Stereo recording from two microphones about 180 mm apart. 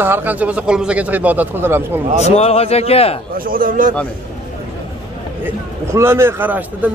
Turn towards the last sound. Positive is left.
turn(degrees=-10)  # may be behind; listen again after turning